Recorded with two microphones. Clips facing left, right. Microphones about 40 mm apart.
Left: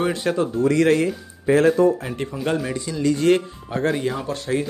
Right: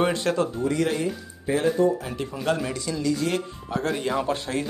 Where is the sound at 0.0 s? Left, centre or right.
Centre.